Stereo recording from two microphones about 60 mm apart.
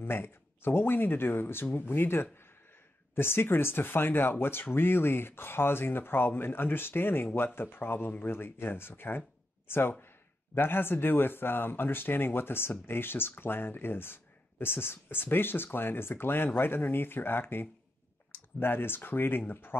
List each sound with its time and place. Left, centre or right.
0.0 s speech: left